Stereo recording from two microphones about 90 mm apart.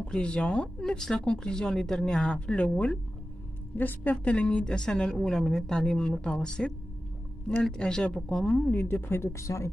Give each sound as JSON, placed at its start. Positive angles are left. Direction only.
{"t": 0.0, "sound": "speech", "side_deg": 10}
{"t": 8.6, "sound": "speech", "side_deg": 25}